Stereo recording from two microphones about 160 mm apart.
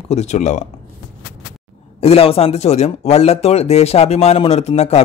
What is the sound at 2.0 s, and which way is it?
A man's voice, 40° left (ahead or behind).